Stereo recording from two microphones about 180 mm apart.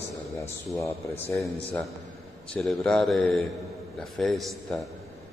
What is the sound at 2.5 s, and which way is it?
A man's voice, 5° left (ahead or behind).